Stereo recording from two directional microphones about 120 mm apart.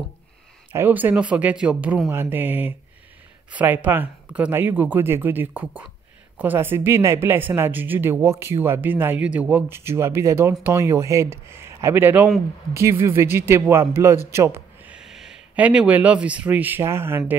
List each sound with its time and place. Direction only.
0.7 s speech: 15° right (ahead or behind)
14.9 s speech: 5° right (ahead or behind)